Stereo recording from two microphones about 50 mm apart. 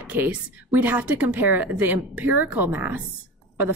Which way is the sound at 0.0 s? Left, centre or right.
Right.